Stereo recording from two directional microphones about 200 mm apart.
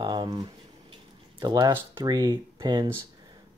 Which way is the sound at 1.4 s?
20° right (ahead or behind).